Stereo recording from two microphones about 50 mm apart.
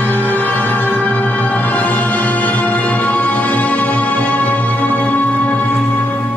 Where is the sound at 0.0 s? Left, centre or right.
Left.